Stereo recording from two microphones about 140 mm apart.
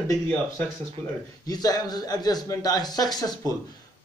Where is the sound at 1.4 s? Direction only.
25° left (ahead or behind).